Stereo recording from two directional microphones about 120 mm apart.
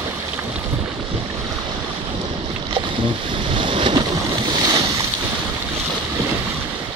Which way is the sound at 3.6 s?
45° right (ahead or behind).